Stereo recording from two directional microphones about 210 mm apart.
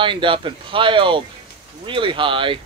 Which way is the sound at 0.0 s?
25° right (ahead or behind).